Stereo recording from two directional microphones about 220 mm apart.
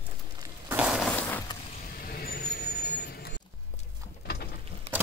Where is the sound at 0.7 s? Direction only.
5° right (ahead or behind).